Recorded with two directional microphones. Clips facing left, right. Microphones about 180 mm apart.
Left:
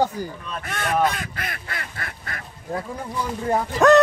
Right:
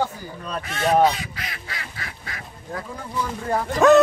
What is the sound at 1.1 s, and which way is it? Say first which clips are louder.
Speech: left 2 dB; 55° left (ahead or behind).